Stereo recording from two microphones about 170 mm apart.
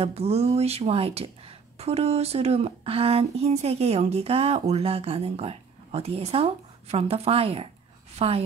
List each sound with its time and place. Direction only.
0.0 s speech: 35° right (ahead or behind)